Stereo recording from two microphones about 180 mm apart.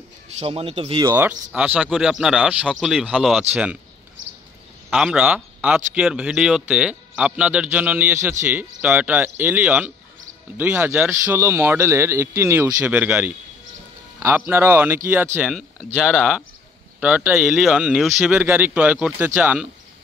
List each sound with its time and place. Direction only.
0.4 s a man's voice: 30° right (ahead or behind)
1.0 s speech: 10° right (ahead or behind)
4.8 s speech: 5° right (ahead or behind)
15.9 s speech: 5° left (ahead or behind)
17.0 s speech: 10° right (ahead or behind)